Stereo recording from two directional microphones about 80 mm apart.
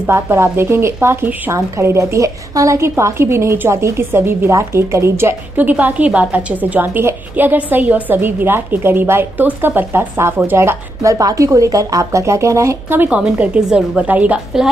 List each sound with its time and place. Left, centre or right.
0.0 s a woman's voice: right
12.9 s a woman's voice: right
13.2 s a woman's voice: centre